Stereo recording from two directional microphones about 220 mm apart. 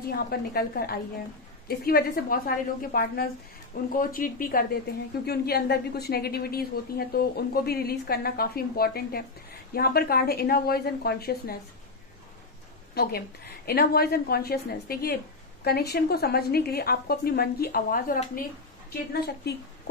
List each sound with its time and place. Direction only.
0.1 s a woman's voice: 45° left (ahead or behind)
12.9 s a woman's voice: 45° left (ahead or behind)